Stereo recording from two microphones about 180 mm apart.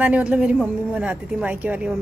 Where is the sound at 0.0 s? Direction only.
10° right (ahead or behind).